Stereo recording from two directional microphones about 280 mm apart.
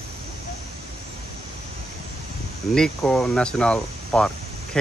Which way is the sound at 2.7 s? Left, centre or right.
Centre.